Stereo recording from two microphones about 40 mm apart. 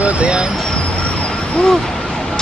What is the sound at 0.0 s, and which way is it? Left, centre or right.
Vehicle, right.